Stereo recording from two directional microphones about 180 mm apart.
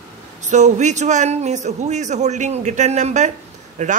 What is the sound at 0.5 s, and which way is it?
A man's voice, 40° right (ahead or behind).